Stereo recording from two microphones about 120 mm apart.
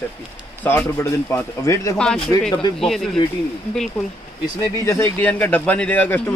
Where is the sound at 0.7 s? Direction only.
20° left (ahead or behind).